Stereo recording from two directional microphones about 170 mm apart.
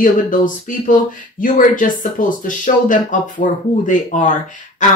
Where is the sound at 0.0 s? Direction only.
50° left (ahead or behind).